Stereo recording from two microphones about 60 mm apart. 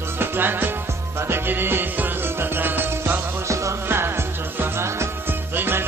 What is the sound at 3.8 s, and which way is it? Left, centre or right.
Music, right.